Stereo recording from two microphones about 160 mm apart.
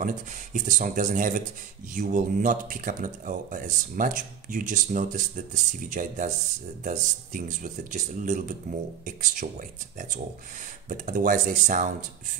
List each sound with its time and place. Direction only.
0.0 s speech: 55° right (ahead or behind)